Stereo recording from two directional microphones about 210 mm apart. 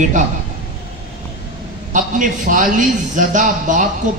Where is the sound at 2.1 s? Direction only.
40° right (ahead or behind).